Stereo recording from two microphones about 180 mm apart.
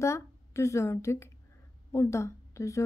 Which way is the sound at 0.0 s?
15° left (ahead or behind).